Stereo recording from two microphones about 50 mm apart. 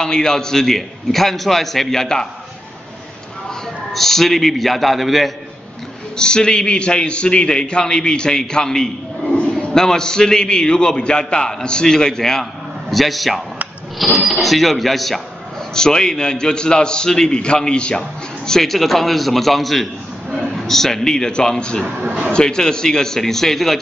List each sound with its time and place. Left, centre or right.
0.0 s a man's voice: centre
3.9 s a man's voice: centre
6.1 s a man's voice: centre
18.5 s a man's voice: centre